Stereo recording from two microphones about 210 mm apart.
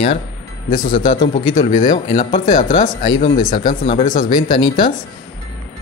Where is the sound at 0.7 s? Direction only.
40° left (ahead or behind).